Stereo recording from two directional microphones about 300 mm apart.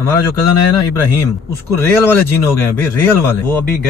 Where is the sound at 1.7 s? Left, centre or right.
Centre.